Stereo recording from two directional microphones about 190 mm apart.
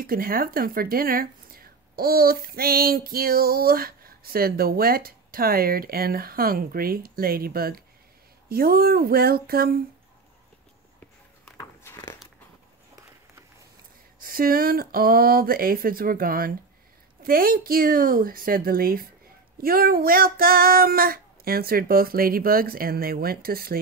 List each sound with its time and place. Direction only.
0.0 s speech: 50° right (ahead or behind)
11.5 s biting: 15° left (ahead or behind)
14.2 s speech: 50° right (ahead or behind)